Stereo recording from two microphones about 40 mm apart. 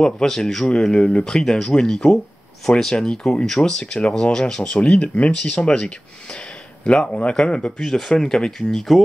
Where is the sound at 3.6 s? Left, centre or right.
Left.